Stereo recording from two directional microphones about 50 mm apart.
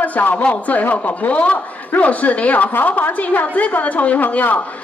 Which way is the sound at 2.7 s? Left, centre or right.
Left.